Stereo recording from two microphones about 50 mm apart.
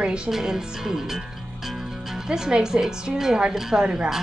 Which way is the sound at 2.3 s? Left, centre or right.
Centre.